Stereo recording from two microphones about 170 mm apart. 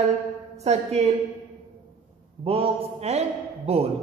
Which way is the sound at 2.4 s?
35° right (ahead or behind).